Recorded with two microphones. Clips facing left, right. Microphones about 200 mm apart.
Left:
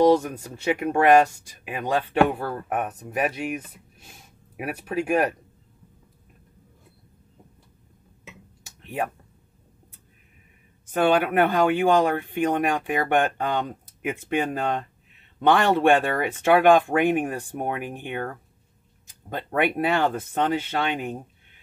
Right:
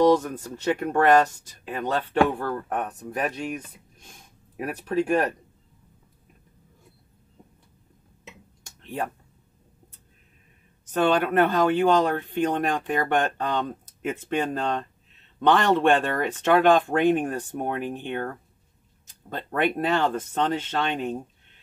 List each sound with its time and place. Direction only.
0.0 s speech: 10° left (ahead or behind)
8.6 s a sound: 10° left (ahead or behind)
10.9 s speech: 10° left (ahead or behind)